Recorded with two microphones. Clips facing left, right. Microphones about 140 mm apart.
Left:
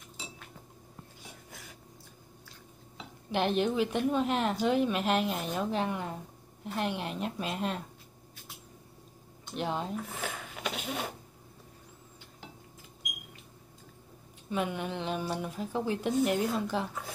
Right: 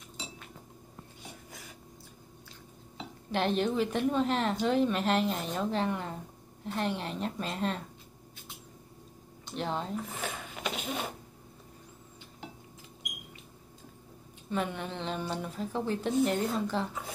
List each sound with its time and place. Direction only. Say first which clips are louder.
3.3 s a woman's voice: left 1 dB; 5° left (ahead or behind)
9.5 s speech: even; 5° left (ahead or behind)
14.5 s a woman's voice: left 1 dB; 5° left (ahead or behind)